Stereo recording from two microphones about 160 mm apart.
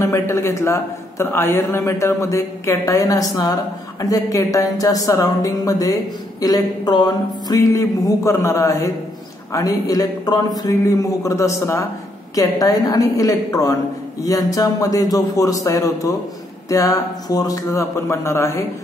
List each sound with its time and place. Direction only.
0.0 s a man's voice: 15° left (ahead or behind)